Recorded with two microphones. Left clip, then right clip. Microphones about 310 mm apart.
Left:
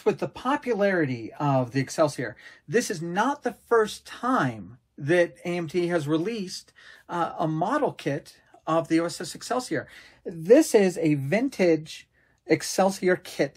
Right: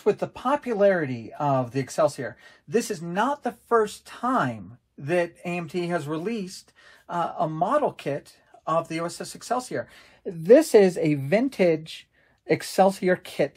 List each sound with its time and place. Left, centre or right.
0.0 s speech: centre
10.4 s speech: right